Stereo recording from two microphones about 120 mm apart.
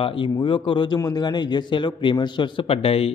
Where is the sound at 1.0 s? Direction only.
30° left (ahead or behind); by 3.1 s 55° left (ahead or behind).